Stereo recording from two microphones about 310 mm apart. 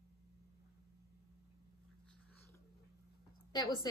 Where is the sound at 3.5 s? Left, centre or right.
Centre.